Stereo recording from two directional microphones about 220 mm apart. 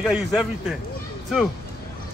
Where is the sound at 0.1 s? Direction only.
Centre (ahead or behind).